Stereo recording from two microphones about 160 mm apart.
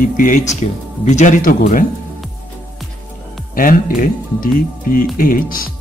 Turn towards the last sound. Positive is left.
turn(degrees=60)  # may be behind; listen again after turning